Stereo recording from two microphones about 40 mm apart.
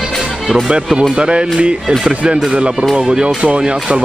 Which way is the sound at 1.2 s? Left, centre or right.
Right.